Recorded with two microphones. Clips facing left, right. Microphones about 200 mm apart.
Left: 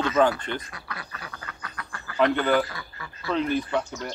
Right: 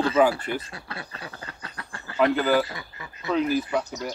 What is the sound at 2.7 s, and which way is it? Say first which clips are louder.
Duck: right 1 dB; 20° right (ahead or behind).